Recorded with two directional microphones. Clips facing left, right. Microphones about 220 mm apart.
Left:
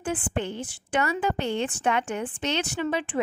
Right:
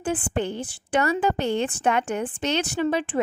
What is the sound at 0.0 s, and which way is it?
A woman's voice, 35° right (ahead or behind).